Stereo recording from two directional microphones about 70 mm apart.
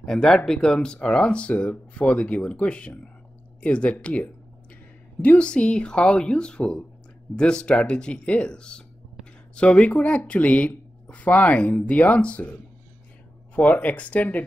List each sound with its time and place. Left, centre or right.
0.0 s speech: centre
13.6 s speech: left